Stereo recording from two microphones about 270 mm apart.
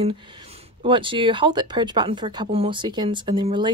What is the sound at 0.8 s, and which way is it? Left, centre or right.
Speech, centre.